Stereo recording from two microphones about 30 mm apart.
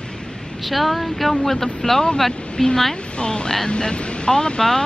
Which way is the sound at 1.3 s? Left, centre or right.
Left.